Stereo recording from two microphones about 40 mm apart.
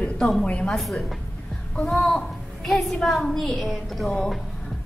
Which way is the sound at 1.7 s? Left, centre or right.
Left.